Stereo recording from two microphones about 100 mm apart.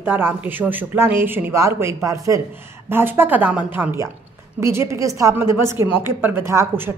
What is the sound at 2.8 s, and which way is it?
A woman's voice, 25° right (ahead or behind).